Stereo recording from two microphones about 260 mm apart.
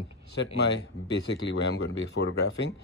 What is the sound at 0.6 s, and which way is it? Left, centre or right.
Speech, left.